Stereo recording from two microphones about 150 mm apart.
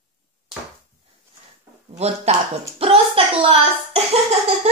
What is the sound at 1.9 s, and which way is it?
A child's voice, 45° right (ahead or behind).